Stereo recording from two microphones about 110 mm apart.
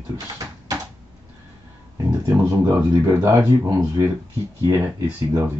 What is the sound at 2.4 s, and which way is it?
Speech, 25° right (ahead or behind).